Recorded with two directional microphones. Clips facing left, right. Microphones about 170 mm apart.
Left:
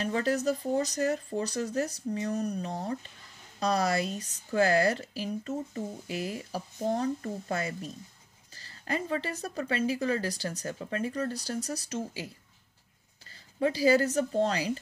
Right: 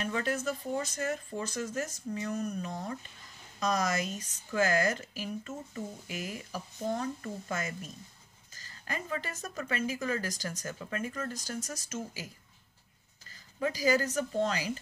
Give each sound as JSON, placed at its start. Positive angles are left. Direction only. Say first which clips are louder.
{"t": 0.0, "sound": "speech", "louder": "left 4 dB", "side_deg": 35}
{"t": 13.6, "sound": "speech", "louder": "left 5 dB", "side_deg": 30}